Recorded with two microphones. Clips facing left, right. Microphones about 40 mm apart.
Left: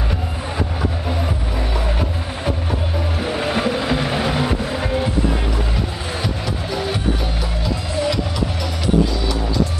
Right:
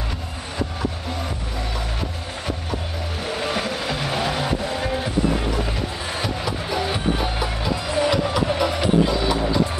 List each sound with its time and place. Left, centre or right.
3.3 s music: centre
6.2 s music: centre
7.6 s music: centre